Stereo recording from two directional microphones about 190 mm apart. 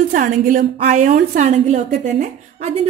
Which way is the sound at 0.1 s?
45° right (ahead or behind).